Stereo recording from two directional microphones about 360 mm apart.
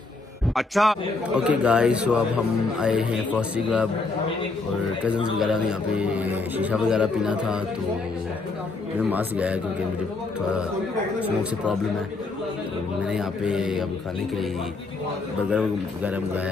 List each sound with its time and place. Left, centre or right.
0.6 s a man's voice: centre
5.0 s a man's voice: centre
9.1 s a man's voice: centre
11.1 s a man's voice: centre
13.1 s a man's voice: centre